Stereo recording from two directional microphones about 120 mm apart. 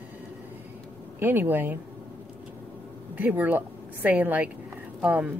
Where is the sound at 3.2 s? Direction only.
15° right (ahead or behind).